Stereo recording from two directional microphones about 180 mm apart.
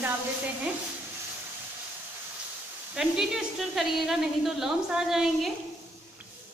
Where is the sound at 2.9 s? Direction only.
5° right (ahead or behind).